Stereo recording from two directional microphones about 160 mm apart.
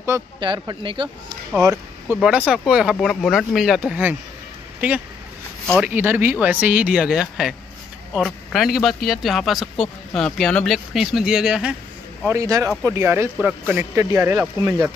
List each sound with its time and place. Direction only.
0.4 s speech: 30° right (ahead or behind)
1.6 s speech: 20° right (ahead or behind)
2.1 s a man's voice: 5° right (ahead or behind)
12.3 s speech: 20° right (ahead or behind)